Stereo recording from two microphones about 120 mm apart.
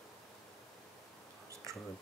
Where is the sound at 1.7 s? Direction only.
25° right (ahead or behind).